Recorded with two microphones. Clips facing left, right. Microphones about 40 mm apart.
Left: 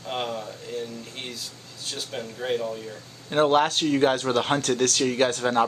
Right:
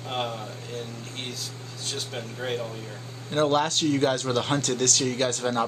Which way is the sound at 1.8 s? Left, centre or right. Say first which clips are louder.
Left 1 dB; centre.